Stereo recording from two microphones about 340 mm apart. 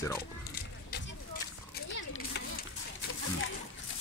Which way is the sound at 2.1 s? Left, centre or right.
Left.